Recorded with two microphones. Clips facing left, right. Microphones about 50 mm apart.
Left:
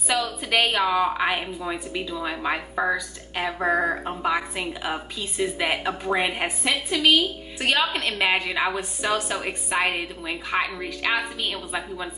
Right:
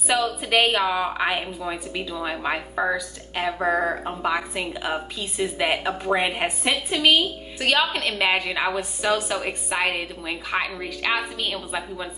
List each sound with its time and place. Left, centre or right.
0.1 s a woman's voice: centre
4.6 s a woman's voice: centre
6.7 s a woman's voice: right
7.5 s a woman's voice: centre
8.3 s a woman's voice: centre